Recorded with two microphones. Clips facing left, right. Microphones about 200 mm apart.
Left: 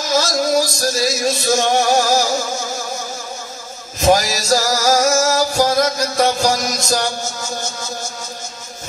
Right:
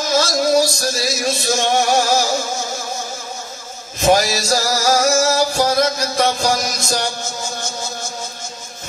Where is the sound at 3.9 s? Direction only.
35° left (ahead or behind).